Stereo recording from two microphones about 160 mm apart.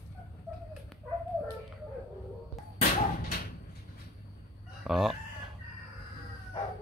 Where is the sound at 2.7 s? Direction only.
60° left (ahead or behind).